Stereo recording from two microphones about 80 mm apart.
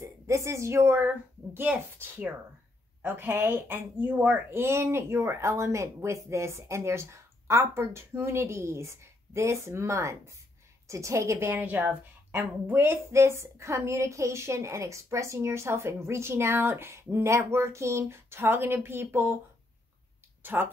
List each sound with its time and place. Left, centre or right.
0.0 s a woman's voice: right
1.0 s a woman's voice: right
11.6 s a woman's voice: centre
20.5 s a woman's voice: right